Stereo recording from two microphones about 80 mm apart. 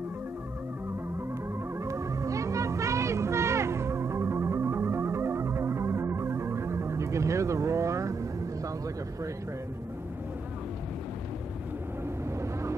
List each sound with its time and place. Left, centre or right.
1.9 s music: right